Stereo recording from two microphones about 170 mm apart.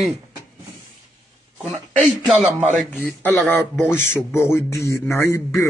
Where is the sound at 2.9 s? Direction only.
15° left (ahead or behind).